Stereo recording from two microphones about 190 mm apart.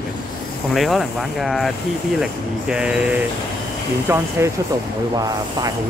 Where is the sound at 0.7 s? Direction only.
Centre (ahead or behind).